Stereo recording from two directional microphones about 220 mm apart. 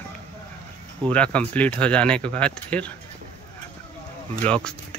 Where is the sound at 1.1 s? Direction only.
5° left (ahead or behind).